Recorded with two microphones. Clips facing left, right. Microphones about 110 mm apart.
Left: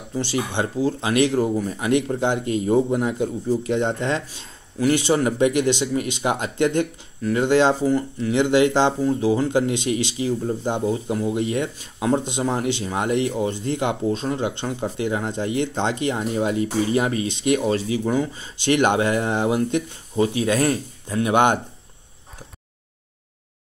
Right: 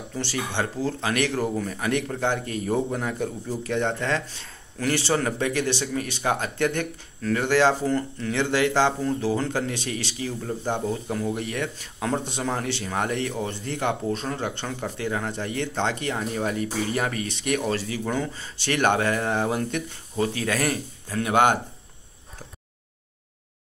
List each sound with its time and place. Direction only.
0.1 s speech: 15° left (ahead or behind)